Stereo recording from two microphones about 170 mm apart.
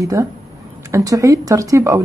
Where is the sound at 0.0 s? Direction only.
20° right (ahead or behind).